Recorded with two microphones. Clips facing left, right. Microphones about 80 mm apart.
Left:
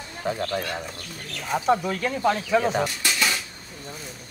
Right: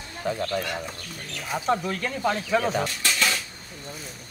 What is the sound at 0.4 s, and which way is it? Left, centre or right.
Speech, left.